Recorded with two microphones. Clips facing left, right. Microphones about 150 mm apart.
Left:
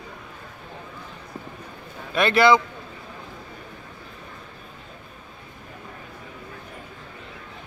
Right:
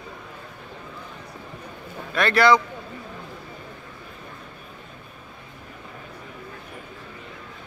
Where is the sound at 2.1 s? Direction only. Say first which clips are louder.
Left 1 dB; 20° left (ahead or behind).